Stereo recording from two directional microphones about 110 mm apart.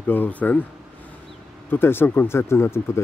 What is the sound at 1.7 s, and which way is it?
Speech, 20° left (ahead or behind).